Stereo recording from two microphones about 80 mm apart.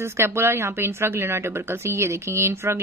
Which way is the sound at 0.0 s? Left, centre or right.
Right.